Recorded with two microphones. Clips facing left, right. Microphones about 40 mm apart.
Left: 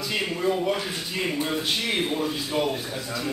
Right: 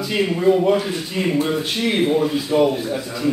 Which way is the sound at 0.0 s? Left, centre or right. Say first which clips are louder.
Right 8 dB; centre.